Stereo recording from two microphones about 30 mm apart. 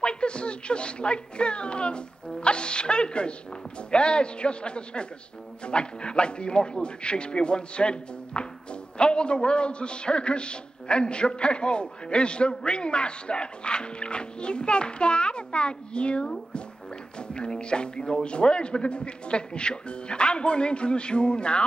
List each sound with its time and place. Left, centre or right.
0.0 s a man's voice: left